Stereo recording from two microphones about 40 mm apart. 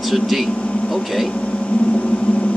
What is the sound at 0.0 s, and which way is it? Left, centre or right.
Speech, centre.